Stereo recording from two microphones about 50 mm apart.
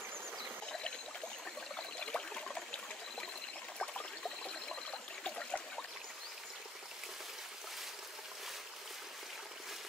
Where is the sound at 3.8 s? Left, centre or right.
Left.